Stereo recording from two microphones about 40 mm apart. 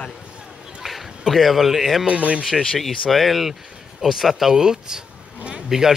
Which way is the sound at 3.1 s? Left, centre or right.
Centre.